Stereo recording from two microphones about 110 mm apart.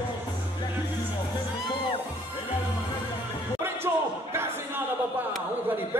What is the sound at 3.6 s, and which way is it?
Basketball bounce, 20° right (ahead or behind).